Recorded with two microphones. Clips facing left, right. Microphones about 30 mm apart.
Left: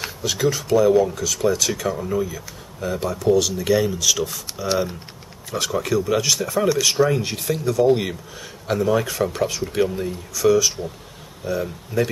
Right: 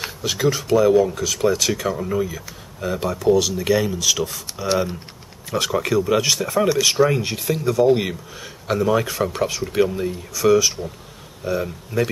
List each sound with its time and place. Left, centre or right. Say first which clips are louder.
0.2 s speech: right 1 dB; centre